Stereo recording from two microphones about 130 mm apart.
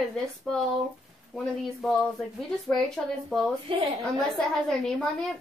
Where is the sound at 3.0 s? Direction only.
5° left (ahead or behind).